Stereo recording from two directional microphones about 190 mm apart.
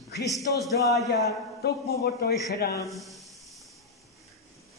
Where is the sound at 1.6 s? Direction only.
55° left (ahead or behind).